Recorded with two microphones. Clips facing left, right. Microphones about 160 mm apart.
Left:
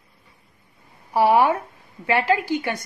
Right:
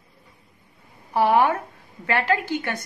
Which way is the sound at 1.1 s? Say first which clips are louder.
Left 2 dB; 10° left (ahead or behind).